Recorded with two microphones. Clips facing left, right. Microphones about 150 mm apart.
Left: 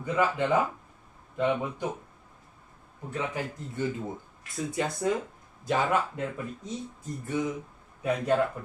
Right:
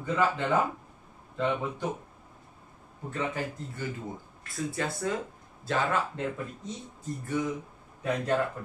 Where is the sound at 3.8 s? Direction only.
20° left (ahead or behind).